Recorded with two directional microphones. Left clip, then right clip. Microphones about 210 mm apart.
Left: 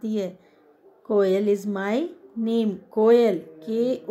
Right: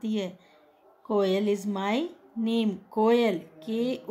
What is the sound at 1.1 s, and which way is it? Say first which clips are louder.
Speech: left 5 dB; 5° right (ahead or behind).